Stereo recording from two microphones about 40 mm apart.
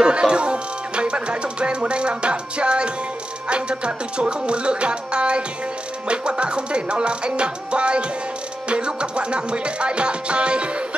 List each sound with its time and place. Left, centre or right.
0.0 s music: right